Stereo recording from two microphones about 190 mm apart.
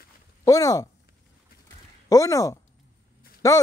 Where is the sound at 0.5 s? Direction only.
20° left (ahead or behind).